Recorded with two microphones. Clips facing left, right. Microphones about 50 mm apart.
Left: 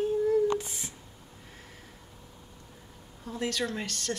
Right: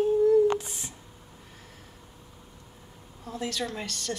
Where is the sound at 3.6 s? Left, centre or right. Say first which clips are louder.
Left 1 dB; left.